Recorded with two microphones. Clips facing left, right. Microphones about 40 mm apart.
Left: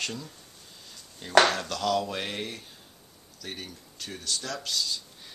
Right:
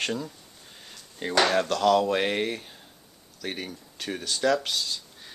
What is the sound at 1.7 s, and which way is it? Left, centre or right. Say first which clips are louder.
Speech: right 6 dB; centre.